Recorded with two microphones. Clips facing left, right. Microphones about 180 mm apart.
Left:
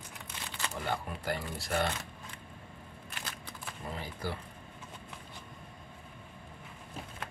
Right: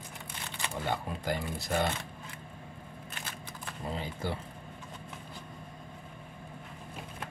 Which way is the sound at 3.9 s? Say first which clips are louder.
Right 3 dB; 25° right (ahead or behind).